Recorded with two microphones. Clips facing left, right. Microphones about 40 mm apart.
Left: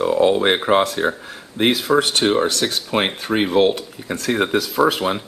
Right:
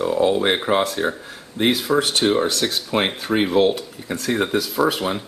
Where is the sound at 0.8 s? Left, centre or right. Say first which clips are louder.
Left 2 dB; centre.